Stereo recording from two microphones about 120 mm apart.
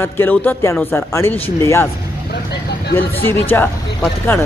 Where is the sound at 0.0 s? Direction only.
15° left (ahead or behind).